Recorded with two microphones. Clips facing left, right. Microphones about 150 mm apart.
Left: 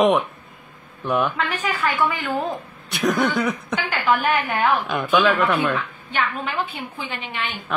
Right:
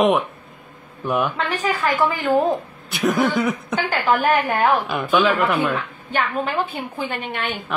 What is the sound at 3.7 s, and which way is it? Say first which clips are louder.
A woman's voice: right 2 dB; 45° right (ahead or behind).